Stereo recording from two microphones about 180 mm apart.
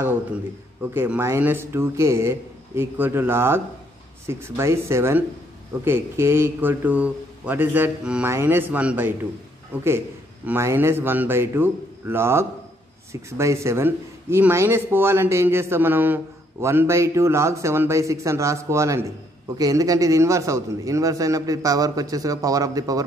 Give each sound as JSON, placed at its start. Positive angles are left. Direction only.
{"t": 0.9, "sound": "a man's voice", "side_deg": -10}